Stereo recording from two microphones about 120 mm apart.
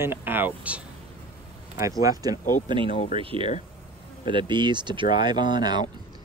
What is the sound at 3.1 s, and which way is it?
Speech, 45° right (ahead or behind).